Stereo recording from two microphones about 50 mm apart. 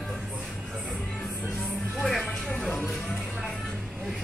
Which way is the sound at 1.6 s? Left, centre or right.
Centre.